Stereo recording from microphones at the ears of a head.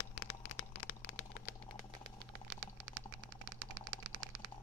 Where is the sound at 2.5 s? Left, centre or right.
Right.